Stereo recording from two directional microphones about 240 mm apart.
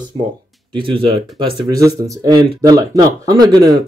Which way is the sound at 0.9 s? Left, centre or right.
Right.